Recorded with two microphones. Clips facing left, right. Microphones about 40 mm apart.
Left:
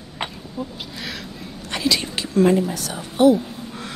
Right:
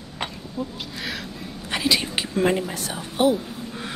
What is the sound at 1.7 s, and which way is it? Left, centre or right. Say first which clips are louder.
A woman's voice: even; centre.